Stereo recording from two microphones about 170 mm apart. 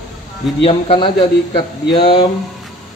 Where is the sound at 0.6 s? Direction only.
35° left (ahead or behind).